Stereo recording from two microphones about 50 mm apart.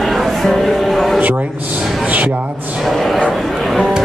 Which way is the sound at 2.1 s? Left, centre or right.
Right.